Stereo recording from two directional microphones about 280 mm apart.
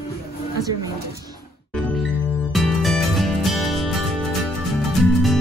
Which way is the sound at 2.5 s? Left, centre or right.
Centre.